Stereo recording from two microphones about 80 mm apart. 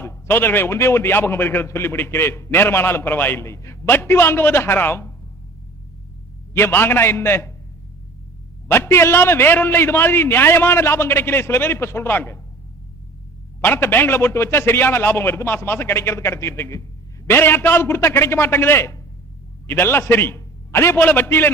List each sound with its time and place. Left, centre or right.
0.0 s a man's voice: left
6.5 s a man's voice: left
8.6 s a man's voice: left
13.6 s a man's voice: left